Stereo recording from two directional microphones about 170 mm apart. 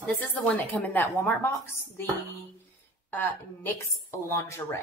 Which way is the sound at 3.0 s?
10° left (ahead or behind).